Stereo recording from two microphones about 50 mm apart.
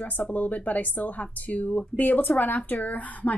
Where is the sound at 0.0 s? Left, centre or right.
Left.